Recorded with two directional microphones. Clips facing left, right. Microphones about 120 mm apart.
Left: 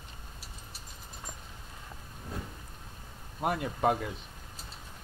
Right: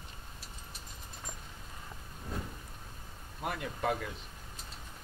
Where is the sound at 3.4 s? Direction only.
25° left (ahead or behind).